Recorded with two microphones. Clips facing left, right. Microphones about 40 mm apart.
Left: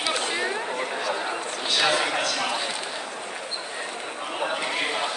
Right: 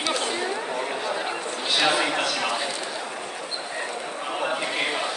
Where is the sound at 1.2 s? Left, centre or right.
Centre.